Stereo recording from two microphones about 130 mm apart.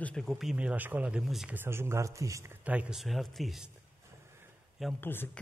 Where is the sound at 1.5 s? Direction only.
20° right (ahead or behind); by 3.7 s centre (ahead or behind).